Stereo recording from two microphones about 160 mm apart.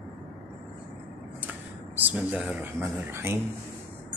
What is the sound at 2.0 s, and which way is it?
Speech, 10° right (ahead or behind).